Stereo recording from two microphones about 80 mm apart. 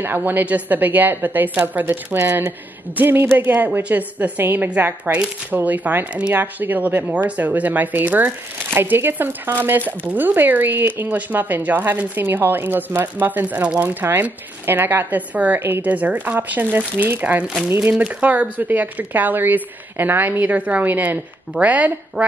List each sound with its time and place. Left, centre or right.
0.0 s speech: right